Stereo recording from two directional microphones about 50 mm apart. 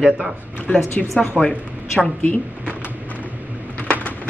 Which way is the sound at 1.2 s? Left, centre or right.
Centre.